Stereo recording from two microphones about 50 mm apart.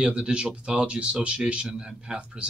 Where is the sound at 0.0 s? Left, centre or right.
Centre.